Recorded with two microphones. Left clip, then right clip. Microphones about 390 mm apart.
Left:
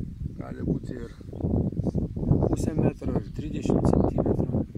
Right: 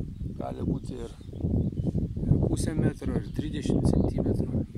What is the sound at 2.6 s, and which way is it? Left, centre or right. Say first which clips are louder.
Speech: left 3 dB; centre.